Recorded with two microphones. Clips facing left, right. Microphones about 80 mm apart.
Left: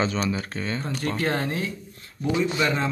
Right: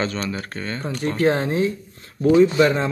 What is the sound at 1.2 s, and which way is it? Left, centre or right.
Speech, right.